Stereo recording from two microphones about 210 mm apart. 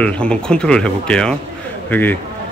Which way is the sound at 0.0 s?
5° left (ahead or behind).